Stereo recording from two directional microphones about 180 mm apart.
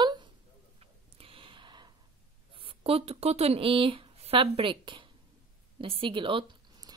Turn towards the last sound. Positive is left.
turn(degrees=-25)  # may be behind; listen again after turning